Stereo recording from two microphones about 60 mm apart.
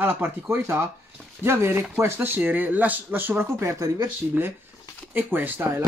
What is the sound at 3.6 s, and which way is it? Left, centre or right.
Speech, right.